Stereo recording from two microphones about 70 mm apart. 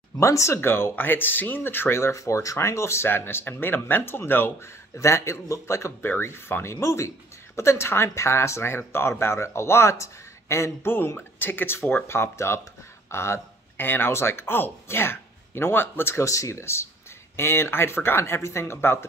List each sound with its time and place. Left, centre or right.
0.2 s speech: left
4.9 s a man's voice: left
6.0 s speech: left
16.3 s a man's voice: left